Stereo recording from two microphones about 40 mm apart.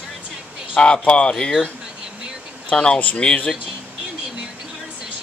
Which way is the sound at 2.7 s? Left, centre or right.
Left.